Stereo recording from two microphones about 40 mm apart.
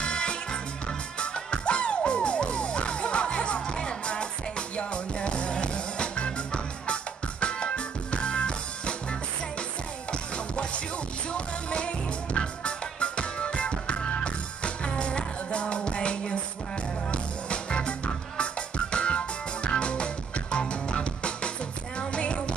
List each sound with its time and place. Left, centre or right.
0.0 s music: left
10.3 s music: left